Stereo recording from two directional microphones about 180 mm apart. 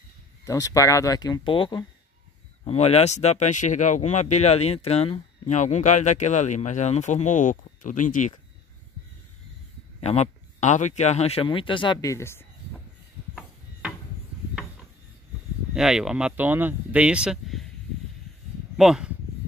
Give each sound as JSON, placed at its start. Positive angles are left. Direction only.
{"t": 0.5, "sound": "speech", "side_deg": 20}
{"t": 9.9, "sound": "speech", "side_deg": 35}
{"t": 13.3, "sound": "a sound", "side_deg": -5}
{"t": 15.7, "sound": "speech", "side_deg": -5}
{"t": 18.8, "sound": "speech", "side_deg": -5}